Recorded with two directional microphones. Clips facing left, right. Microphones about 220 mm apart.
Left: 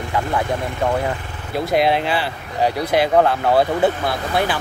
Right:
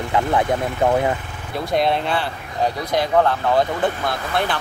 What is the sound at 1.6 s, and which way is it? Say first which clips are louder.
Speech: left 2 dB; 5° left (ahead or behind).